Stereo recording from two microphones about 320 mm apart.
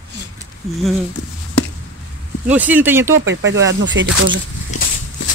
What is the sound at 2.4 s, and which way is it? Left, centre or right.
Speech, centre.